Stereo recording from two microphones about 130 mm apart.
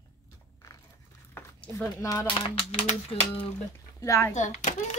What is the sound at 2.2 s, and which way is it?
Speech, 45° left (ahead or behind).